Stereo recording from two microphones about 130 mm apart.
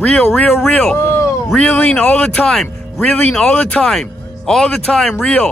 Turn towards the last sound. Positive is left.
turn(degrees=5)  # may be behind; listen again after turning